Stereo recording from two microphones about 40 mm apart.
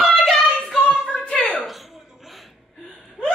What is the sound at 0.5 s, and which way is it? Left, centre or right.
Child singing, left.